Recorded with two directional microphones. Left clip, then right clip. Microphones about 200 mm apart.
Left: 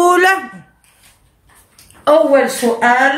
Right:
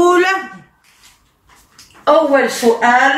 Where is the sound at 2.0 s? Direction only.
55° left (ahead or behind).